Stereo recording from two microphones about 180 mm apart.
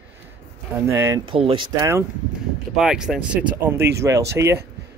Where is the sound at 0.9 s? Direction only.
15° right (ahead or behind).